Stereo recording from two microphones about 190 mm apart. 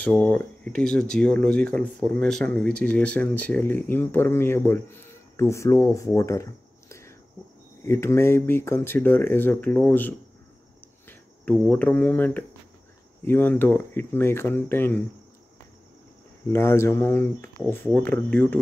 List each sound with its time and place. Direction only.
0.0 s speech: 5° left (ahead or behind)
11.6 s speech: 5° left (ahead or behind)
16.4 s speech: 15° left (ahead or behind)